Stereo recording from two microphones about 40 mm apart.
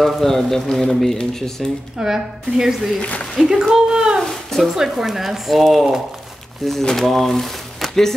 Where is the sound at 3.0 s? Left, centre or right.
Left.